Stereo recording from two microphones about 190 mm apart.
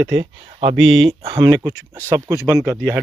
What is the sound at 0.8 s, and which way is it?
Speech, 90° right.